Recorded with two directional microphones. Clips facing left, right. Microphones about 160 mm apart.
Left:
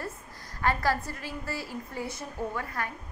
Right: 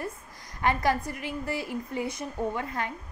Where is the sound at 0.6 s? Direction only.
20° right (ahead or behind).